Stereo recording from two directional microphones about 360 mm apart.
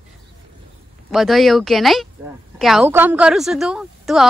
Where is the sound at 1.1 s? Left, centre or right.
Centre.